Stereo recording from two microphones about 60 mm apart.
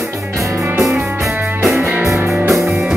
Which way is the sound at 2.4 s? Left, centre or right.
Centre.